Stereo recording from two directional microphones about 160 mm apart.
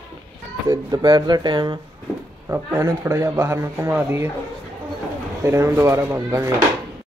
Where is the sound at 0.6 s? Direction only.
20° right (ahead or behind).